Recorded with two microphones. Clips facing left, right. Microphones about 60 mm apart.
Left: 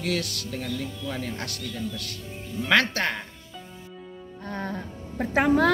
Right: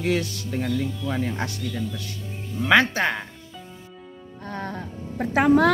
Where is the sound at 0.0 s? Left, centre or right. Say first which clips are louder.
Right 4 dB; right.